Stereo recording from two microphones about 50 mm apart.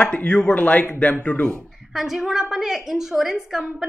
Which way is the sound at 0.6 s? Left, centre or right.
Left.